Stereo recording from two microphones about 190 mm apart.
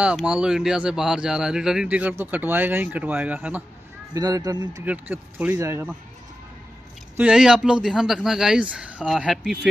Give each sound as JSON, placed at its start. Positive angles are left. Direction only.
{"t": 0.0, "sound": "speech", "side_deg": -5}
{"t": 4.1, "sound": "speech", "side_deg": -20}
{"t": 7.2, "sound": "speech", "side_deg": -5}